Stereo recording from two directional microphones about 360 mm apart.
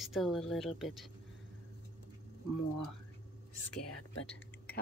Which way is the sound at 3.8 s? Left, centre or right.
Left.